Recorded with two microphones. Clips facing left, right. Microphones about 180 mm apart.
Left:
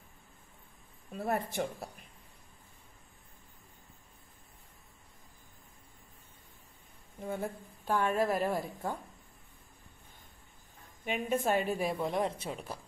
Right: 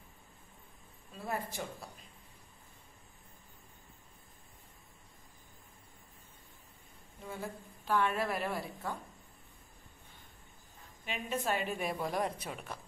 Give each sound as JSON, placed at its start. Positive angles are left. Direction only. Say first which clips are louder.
{"t": 1.1, "sound": "speech", "louder": "left 6 dB", "side_deg": 60}
{"t": 7.2, "sound": "speech", "louder": "left 6 dB", "side_deg": 55}
{"t": 7.9, "sound": "a woman's voice", "louder": "left 3 dB", "side_deg": 40}
{"t": 11.1, "sound": "a woman's voice", "louder": "left 5 dB", "side_deg": 50}
{"t": 11.9, "sound": "a woman's voice", "louder": "left 3 dB", "side_deg": 25}